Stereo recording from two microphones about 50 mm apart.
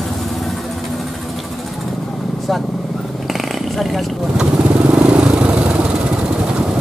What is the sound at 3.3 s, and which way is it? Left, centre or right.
Vehicle, centre.